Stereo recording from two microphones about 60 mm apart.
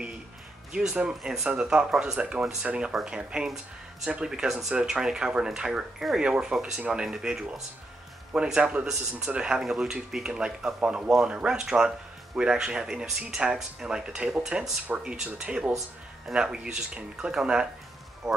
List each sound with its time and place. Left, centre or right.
0.7 s speech: centre